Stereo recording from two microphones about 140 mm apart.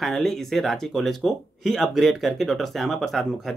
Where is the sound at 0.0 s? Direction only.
Centre (ahead or behind).